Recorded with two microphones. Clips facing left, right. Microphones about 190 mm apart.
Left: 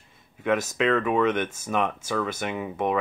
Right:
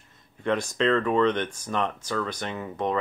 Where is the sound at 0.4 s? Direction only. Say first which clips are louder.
Left 1 dB; 5° left (ahead or behind).